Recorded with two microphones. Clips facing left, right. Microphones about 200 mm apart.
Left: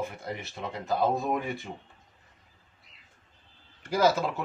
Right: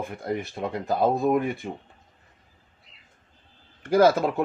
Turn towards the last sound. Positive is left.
turn(degrees=-55)  # may be behind; listen again after turning